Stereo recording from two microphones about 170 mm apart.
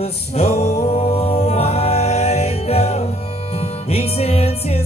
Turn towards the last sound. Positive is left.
turn(degrees=35)  # may be behind; listen again after turning